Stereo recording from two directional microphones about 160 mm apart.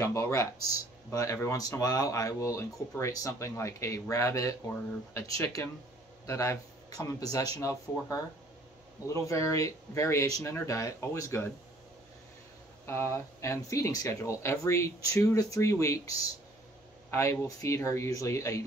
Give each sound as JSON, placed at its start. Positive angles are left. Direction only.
{"t": 0.0, "sound": "speech", "side_deg": 20}
{"t": 12.8, "sound": "speech", "side_deg": 15}